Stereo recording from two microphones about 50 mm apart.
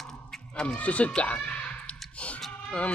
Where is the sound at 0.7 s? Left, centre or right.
Left.